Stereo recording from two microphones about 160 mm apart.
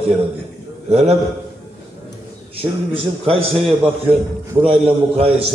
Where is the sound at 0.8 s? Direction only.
40° right (ahead or behind).